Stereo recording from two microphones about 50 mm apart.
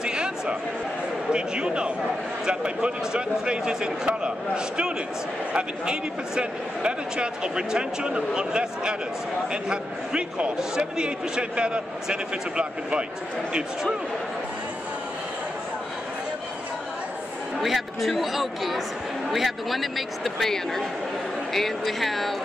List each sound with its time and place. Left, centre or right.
0.0 s a sound: centre
1.3 s a man's voice: centre
5.5 s a man's voice: centre
17.6 s speech: centre